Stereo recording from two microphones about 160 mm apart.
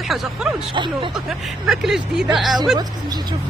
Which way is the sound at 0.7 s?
30° right (ahead or behind).